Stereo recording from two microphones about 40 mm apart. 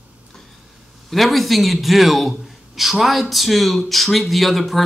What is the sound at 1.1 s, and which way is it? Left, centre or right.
A man's voice, centre.